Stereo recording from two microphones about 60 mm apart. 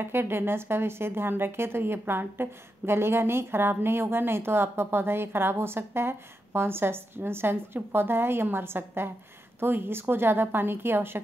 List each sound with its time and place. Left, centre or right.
0.0 s speech: right